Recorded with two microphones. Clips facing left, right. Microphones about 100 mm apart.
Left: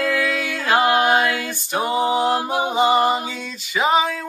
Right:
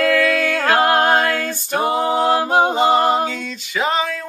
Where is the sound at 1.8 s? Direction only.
60° right (ahead or behind).